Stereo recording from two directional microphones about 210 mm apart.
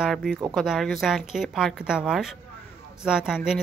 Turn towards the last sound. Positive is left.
turn(degrees=-5)  # may be behind; listen again after turning